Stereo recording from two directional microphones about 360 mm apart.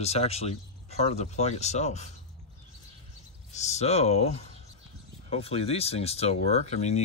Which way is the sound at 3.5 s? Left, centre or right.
Centre.